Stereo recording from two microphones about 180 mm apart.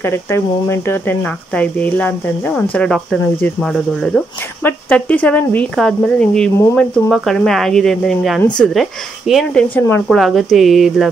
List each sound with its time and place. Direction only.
0.0 s speech: 15° left (ahead or behind); by 11.1 s centre (ahead or behind)